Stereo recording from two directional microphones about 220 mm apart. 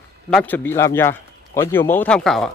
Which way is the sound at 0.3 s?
5° left (ahead or behind).